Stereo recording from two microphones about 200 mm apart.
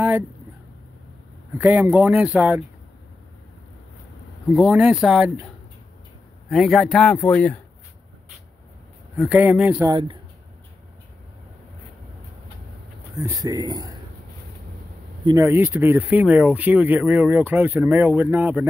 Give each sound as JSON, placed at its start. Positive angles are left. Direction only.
{"t": 1.6, "sound": "speech", "side_deg": -10}
{"t": 4.6, "sound": "speech", "side_deg": -5}
{"t": 6.5, "sound": "speech", "side_deg": 0}
{"t": 9.2, "sound": "speech", "side_deg": -5}
{"t": 9.8, "sound": "speech", "side_deg": -25}
{"t": 13.2, "sound": "speech", "side_deg": -20}
{"t": 15.2, "sound": "speech", "side_deg": -15}